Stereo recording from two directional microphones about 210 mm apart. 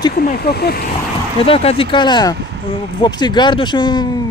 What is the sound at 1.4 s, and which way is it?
Speech, 25° left (ahead or behind).